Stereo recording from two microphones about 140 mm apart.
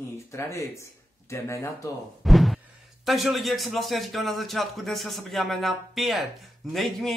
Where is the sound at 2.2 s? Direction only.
Centre (ahead or behind).